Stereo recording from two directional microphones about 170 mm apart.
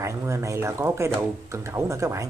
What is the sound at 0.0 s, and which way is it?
Speech, 15° right (ahead or behind).